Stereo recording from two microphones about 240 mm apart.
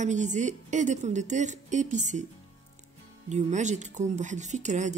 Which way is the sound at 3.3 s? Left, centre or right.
Right.